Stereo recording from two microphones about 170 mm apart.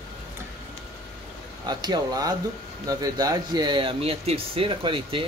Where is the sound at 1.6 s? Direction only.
25° right (ahead or behind).